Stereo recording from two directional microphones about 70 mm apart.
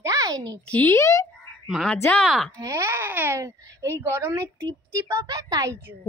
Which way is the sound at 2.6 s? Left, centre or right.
Right.